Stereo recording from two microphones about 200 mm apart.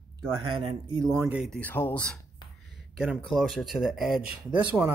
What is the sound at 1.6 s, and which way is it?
Speech, 10° left (ahead or behind).